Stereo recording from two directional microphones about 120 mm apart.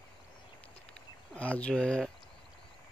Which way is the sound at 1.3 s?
10° left (ahead or behind).